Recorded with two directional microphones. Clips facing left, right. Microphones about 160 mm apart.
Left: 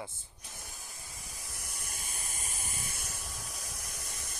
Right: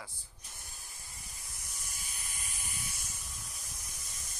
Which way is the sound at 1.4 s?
80° left.